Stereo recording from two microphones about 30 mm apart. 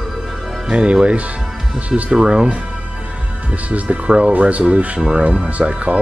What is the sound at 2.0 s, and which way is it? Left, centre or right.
Speech, right.